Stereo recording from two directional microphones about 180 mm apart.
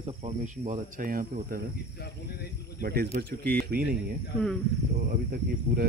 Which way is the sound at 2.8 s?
55° right (ahead or behind).